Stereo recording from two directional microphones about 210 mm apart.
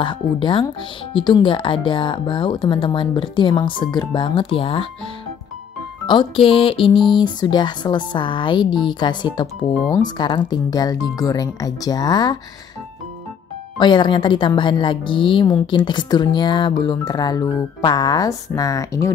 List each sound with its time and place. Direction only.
0.0 s a woman's voice: 25° left (ahead or behind)
6.0 s a woman's voice: 25° left (ahead or behind)
13.7 s a woman's voice: 20° left (ahead or behind)